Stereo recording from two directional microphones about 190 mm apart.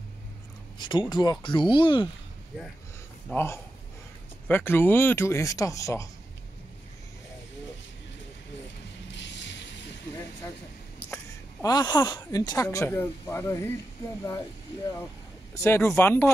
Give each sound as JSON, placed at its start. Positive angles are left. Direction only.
{"t": 0.7, "sound": "speech", "side_deg": 25}
{"t": 3.3, "sound": "speech", "side_deg": 10}
{"t": 9.0, "sound": "a sound", "side_deg": 70}
{"t": 11.6, "sound": "speech", "side_deg": 20}
{"t": 15.5, "sound": "speech", "side_deg": 15}